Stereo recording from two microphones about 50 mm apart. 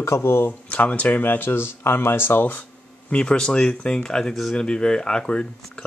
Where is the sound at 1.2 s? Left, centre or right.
Left.